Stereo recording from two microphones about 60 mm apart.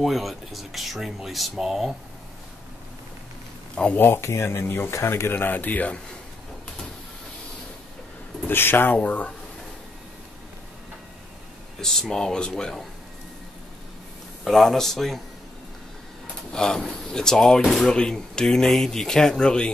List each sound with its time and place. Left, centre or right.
0.0 s speech: centre
3.9 s speech: left
8.5 s speech: left
11.8 s speech: centre
14.4 s speech: centre
16.5 s speech: centre